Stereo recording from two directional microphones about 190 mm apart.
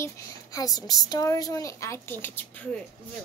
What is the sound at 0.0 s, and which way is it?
A child's voice, 15° left (ahead or behind).